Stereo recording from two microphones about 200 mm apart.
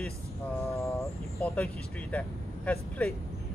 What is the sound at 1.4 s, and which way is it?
Speech, 5° left (ahead or behind).